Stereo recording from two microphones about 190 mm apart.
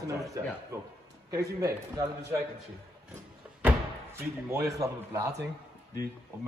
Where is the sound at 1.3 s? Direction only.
15° right (ahead or behind).